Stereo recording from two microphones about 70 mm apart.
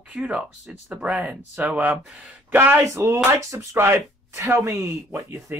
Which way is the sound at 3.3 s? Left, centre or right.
Right.